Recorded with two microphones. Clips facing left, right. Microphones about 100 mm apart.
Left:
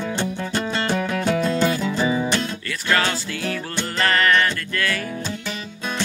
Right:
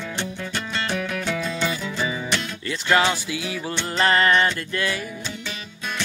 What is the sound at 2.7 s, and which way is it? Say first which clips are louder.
Music: right 3 dB; 20° right (ahead or behind).